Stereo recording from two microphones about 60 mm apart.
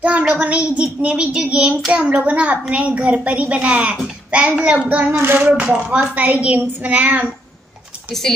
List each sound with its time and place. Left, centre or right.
0.3 s a child's voice: right
5.1 s a sound: right
5.5 s a child's voice: centre
8.1 s speech: centre